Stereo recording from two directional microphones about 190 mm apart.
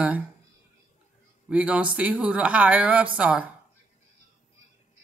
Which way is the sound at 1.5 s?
5° right (ahead or behind).